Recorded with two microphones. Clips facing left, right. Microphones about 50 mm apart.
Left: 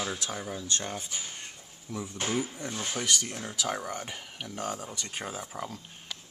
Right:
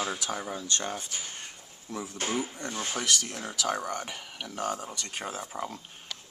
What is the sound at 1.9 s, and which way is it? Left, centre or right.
Speech, centre.